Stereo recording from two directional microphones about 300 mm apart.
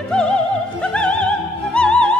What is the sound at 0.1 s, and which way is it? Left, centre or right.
Music, centre.